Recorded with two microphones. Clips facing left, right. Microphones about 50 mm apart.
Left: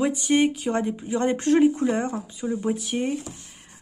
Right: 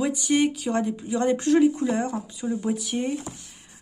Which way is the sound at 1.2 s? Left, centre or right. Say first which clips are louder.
Even; left.